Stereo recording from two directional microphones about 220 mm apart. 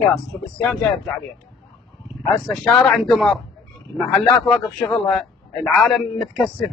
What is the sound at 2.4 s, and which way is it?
Speech, centre (ahead or behind).